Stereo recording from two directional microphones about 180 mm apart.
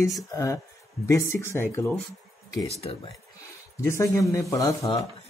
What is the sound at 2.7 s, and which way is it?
Speech, 35° left (ahead or behind).